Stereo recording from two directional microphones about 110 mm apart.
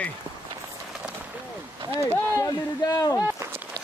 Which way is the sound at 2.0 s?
25° left (ahead or behind).